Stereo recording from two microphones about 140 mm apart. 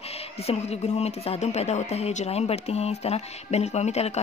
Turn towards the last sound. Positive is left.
turn(degrees=50)  # may be behind; listen again after turning